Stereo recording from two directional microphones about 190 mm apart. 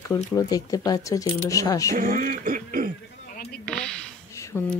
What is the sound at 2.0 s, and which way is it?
Throat clearing, 45° right (ahead or behind).